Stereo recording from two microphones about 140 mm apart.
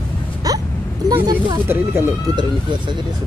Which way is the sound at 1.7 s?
15° right (ahead or behind).